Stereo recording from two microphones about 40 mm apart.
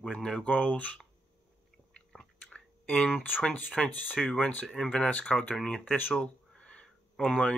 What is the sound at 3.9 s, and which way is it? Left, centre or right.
Speech, left.